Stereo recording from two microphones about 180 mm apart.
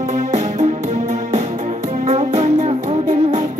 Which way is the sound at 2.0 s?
40° right (ahead or behind).